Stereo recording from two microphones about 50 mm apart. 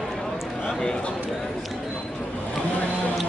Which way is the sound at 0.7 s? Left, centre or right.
Centre.